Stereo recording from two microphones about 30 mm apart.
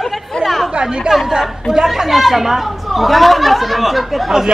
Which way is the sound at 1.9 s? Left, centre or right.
Centre.